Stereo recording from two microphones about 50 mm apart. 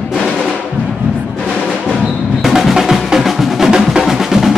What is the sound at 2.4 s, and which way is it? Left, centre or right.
Music, centre.